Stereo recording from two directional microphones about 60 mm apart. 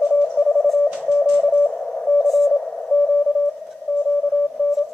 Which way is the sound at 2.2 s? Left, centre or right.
Centre.